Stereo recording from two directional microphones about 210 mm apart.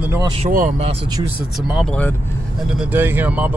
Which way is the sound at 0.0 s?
15° right (ahead or behind).